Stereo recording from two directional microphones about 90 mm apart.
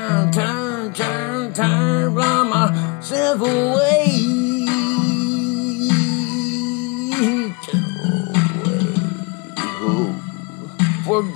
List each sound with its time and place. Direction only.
0.0 s music: 35° left (ahead or behind)